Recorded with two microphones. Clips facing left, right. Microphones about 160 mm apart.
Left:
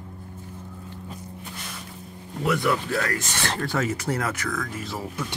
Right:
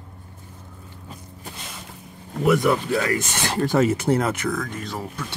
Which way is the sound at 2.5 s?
25° right (ahead or behind).